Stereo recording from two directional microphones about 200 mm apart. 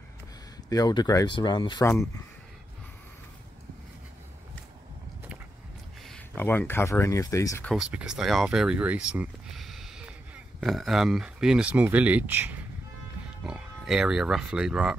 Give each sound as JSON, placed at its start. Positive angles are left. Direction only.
{"t": 0.7, "sound": "speech", "side_deg": 20}
{"t": 6.0, "sound": "speech", "side_deg": 10}
{"t": 7.7, "sound": "speech", "side_deg": -5}